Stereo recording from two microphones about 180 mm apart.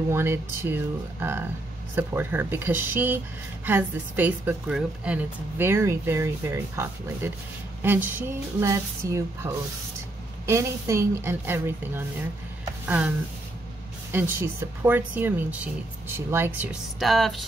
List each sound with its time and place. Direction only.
0.1 s a woman's voice: 15° right (ahead or behind)
7.8 s a sound: 10° right (ahead or behind)
8.5 s a woman's voice: 15° right (ahead or behind)
14.1 s a woman's voice: 10° right (ahead or behind)
17.1 s speech: centre (ahead or behind)